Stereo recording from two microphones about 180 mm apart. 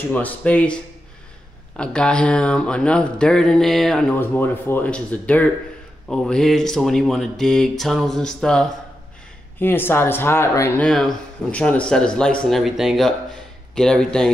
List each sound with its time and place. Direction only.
0.1 s speech: 10° left (ahead or behind)
1.8 s speech: 5° left (ahead or behind)
10.9 s speech: centre (ahead or behind)